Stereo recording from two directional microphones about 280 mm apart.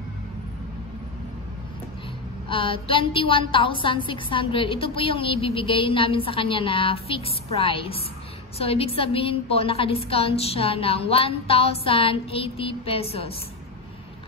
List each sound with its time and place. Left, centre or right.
2.5 s a woman's voice: centre